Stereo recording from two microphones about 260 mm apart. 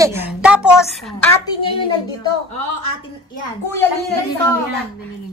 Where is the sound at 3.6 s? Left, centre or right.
Centre.